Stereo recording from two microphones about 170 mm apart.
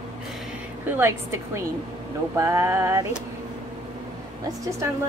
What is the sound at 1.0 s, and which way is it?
Speech, 15° right (ahead or behind).